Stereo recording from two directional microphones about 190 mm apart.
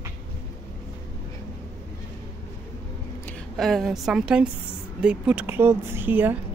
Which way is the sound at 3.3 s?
5° left (ahead or behind).